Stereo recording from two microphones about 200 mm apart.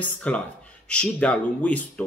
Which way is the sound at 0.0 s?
5° left (ahead or behind).